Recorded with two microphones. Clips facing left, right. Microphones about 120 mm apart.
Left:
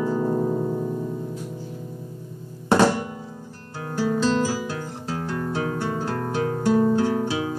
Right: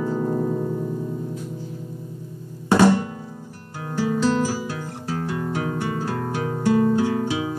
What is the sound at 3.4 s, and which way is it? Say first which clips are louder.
Harp: even; 10° right (ahead or behind).